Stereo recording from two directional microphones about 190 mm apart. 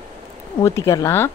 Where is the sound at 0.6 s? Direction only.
15° left (ahead or behind).